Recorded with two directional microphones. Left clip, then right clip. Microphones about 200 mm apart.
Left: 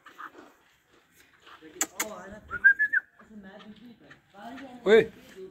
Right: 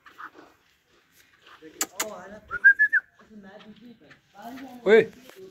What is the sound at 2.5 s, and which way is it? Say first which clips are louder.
Whistling: right 3 dB; 5° right (ahead or behind).